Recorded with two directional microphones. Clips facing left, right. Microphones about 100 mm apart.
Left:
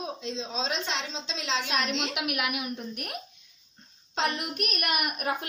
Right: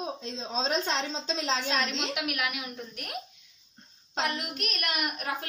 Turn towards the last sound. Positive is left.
turn(degrees=20)  # may be behind; listen again after turning